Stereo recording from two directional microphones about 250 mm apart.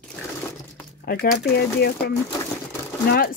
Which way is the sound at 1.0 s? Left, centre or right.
Left.